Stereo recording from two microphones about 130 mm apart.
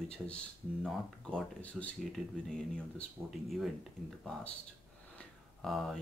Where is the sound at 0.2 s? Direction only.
10° right (ahead or behind).